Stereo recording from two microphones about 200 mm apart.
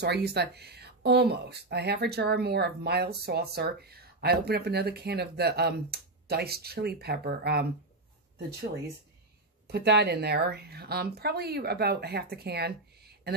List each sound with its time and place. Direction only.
0.0 s speech: 55° right (ahead or behind)
9.7 s speech: 55° right (ahead or behind)